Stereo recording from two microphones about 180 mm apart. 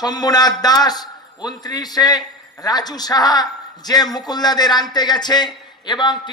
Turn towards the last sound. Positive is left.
turn(degrees=25)  # may be behind; listen again after turning